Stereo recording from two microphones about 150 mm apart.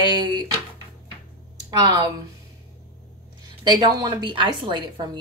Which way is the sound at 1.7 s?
25° right (ahead or behind).